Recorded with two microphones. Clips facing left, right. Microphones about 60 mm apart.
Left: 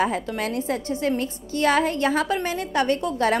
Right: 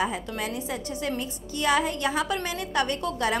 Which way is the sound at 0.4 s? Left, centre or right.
Left.